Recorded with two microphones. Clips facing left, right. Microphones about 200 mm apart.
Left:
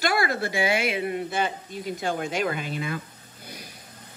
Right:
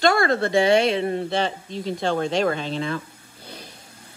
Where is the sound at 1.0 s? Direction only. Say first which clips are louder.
Right 4 dB; 30° right (ahead or behind).